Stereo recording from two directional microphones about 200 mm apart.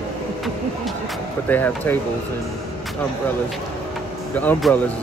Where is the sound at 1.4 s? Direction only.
10° left (ahead or behind).